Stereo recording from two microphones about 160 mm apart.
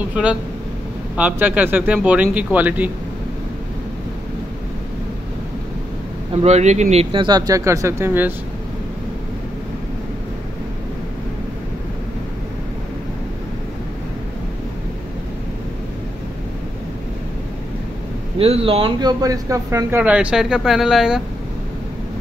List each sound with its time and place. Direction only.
0.1 s speech: 10° right (ahead or behind)
6.3 s speech: 45° right (ahead or behind); by 8.3 s 15° right (ahead or behind)
18.4 s speech: 35° right (ahead or behind); by 20.0 s 20° right (ahead or behind)
20.0 s speech: 5° right (ahead or behind)